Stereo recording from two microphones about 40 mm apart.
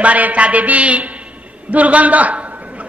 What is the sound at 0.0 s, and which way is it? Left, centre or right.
A man's voice, right.